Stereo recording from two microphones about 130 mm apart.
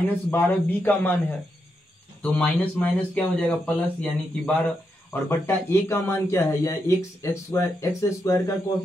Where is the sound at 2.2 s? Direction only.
10° left (ahead or behind).